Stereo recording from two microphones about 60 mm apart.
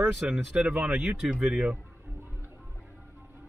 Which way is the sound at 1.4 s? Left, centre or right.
Centre.